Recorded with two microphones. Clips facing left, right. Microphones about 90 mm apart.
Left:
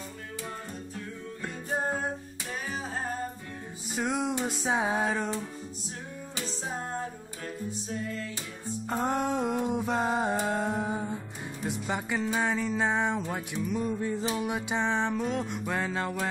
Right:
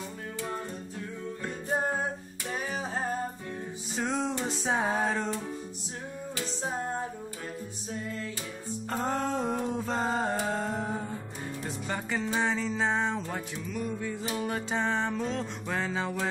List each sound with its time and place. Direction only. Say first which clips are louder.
3.9 s music: left 1 dB; 10° left (ahead or behind)
8.8 s a sound: left 2 dB; 5° left (ahead or behind)
11.6 s music: left 4 dB; 15° left (ahead or behind)
13.9 s music: left 4 dB; 30° left (ahead or behind)
14.3 s music: left 1 dB; 10° left (ahead or behind)